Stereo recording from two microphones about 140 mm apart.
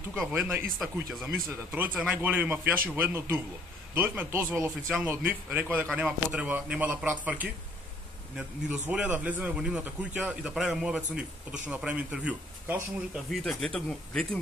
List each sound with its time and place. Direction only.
0.3 s speech: 15° right (ahead or behind)
1.1 s speech: centre (ahead or behind)
1.7 s speech: 10° right (ahead or behind)
13.3 s speech: 5° left (ahead or behind)